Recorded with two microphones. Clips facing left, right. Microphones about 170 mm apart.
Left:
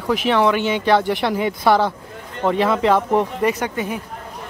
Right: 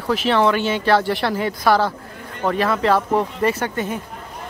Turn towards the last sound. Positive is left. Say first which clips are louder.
# even
turn(degrees=10)  # may be behind; listen again after turning